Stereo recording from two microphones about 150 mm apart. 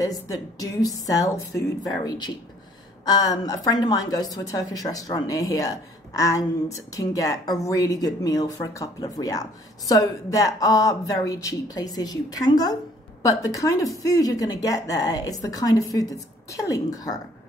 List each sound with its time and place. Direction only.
0.3 s a woman's voice: 25° left (ahead or behind)